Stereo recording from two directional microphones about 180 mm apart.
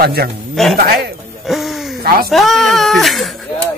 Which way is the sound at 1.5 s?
Centre (ahead or behind).